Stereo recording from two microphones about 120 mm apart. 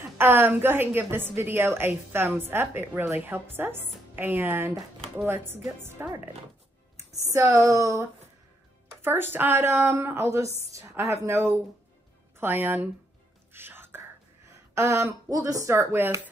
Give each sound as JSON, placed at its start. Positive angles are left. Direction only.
{"t": 0.0, "sound": "a woman's voice", "side_deg": -15}
{"t": 7.3, "sound": "a woman's voice", "side_deg": -25}
{"t": 13.5, "sound": "whispering", "side_deg": -20}
{"t": 14.8, "sound": "speech", "side_deg": -25}